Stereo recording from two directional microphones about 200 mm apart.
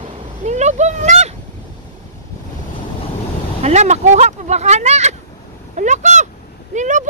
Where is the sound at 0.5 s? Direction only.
35° right (ahead or behind).